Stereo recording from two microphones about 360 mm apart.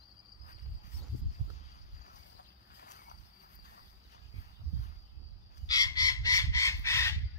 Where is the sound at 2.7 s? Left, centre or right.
Left.